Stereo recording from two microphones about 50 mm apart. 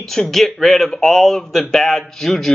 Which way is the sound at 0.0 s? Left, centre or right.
Centre.